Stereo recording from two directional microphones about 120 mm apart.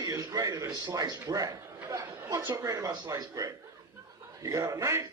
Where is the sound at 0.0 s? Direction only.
30° right (ahead or behind).